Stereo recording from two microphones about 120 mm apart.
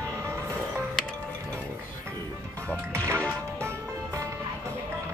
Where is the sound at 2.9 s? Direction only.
20° right (ahead or behind).